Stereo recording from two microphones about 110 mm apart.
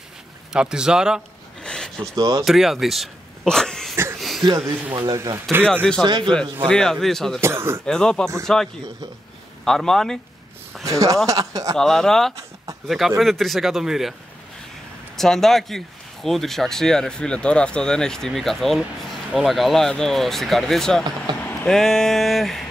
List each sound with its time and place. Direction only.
0.5 s speech: 5° right (ahead or behind)
1.6 s a sound: 5° left (ahead or behind)
2.1 s speech: 35° right (ahead or behind)
2.4 s speech: centre (ahead or behind)
4.6 s speech: 25° right (ahead or behind)
4.9 s speech: 35° right (ahead or behind)
6.0 s speech: 40° right (ahead or behind)
6.7 s speech: 5° left (ahead or behind)
7.3 s speech: 25° right (ahead or behind)
7.8 s speech: 5° left (ahead or behind)
9.7 s speech: 5° left (ahead or behind)
10.8 s speech: 30° right (ahead or behind)
11.7 s speech: 5° left (ahead or behind)
15.1 s speech: 5° left (ahead or behind)